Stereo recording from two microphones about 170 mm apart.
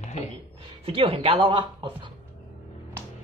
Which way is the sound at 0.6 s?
35° right (ahead or behind).